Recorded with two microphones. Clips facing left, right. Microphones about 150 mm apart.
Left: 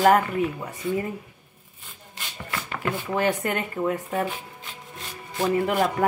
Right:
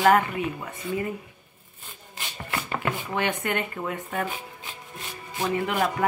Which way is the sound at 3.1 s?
35° left (ahead or behind).